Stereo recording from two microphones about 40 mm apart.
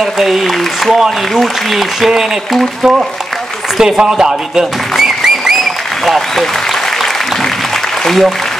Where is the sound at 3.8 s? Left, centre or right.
Centre.